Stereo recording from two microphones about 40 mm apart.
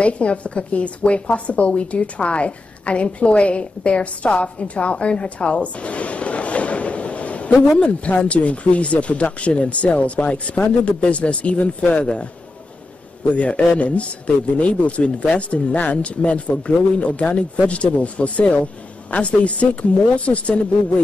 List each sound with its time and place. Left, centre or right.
0.0 s a woman's voice: left
13.3 s speech: left